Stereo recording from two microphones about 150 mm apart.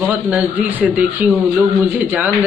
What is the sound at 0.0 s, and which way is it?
A man's voice, 10° right (ahead or behind).